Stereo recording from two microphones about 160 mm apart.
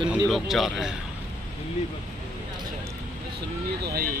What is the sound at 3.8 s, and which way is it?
Speech, 65° right (ahead or behind).